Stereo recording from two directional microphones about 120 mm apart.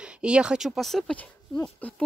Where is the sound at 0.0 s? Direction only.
10° right (ahead or behind).